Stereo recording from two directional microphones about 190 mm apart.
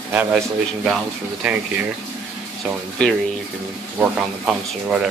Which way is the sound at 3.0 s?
5° left (ahead or behind).